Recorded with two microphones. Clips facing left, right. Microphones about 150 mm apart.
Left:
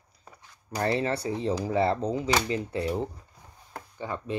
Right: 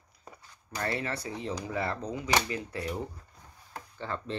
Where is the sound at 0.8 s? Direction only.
30° left (ahead or behind).